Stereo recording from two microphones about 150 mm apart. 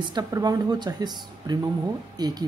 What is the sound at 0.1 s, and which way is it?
Speech, 25° right (ahead or behind).